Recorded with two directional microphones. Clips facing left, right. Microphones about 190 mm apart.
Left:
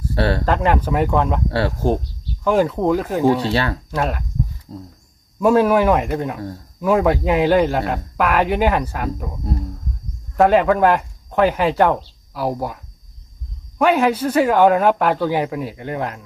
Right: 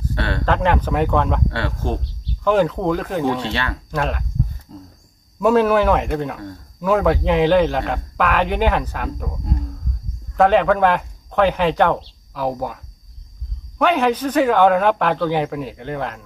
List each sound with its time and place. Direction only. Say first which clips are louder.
0.1 s speech: left 7 dB; 35° left (ahead or behind)
0.5 s a man's voice: left 1 dB; 5° left (ahead or behind)
1.5 s speech: left 6 dB; 35° left (ahead or behind)
2.4 s a man's voice: even; 10° left (ahead or behind)
5.4 s a man's voice: left 1 dB; 10° left (ahead or behind)
10.3 s a man's voice: left 1 dB; 5° left (ahead or behind)
13.7 s a man's voice: left 1 dB; 10° left (ahead or behind)